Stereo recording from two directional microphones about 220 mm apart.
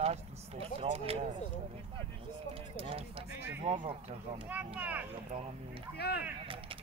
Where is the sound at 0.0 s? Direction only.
25° right (ahead or behind).